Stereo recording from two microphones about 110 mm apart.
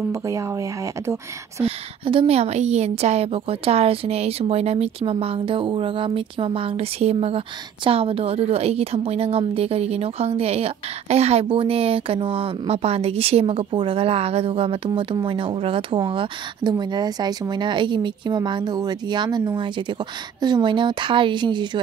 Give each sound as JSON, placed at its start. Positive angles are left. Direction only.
{"t": 0.1, "sound": "speech", "side_deg": -30}
{"t": 1.6, "sound": "a woman's voice", "side_deg": -55}